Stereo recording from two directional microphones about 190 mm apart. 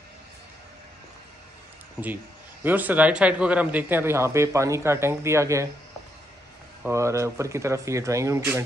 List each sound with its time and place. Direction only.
2.6 s speech: 10° right (ahead or behind)
6.8 s speech: 15° right (ahead or behind)